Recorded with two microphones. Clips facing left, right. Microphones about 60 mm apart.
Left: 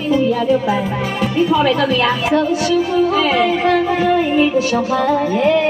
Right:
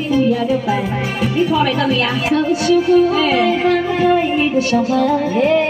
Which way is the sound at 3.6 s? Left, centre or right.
Centre.